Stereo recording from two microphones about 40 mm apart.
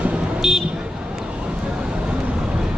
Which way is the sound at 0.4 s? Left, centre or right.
Centre.